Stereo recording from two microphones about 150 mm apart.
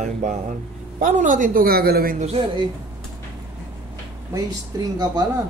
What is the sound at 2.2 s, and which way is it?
Speech, 35° right (ahead or behind).